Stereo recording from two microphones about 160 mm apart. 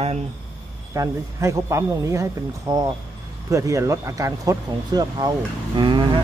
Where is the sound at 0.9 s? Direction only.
20° right (ahead or behind).